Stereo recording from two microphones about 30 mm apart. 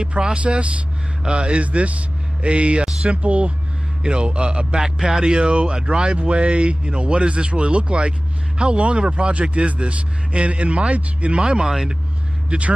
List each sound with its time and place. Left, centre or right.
0.0 s speech: right
1.6 s a man's voice: right
4.7 s speech: centre
5.2 s speech: right
9.3 s a man's voice: right
11.3 s speech: right
12.4 s speech: right